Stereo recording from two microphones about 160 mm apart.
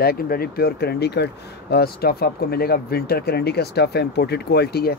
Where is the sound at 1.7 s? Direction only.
75° left (ahead or behind).